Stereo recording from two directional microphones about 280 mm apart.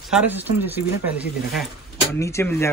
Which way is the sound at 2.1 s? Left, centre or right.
Centre.